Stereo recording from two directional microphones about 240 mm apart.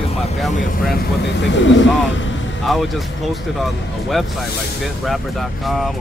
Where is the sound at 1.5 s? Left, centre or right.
Left.